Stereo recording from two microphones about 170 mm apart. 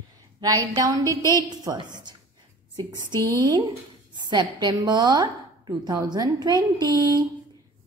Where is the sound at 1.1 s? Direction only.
20° left (ahead or behind).